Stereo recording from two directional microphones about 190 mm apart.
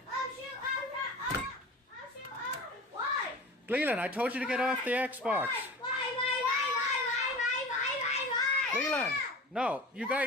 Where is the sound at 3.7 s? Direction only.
10° right (ahead or behind).